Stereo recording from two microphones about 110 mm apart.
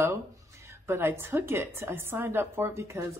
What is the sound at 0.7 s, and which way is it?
A woman's voice, 20° right (ahead or behind).